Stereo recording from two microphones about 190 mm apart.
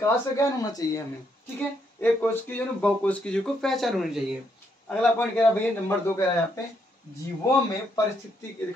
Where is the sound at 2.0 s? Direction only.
10° left (ahead or behind).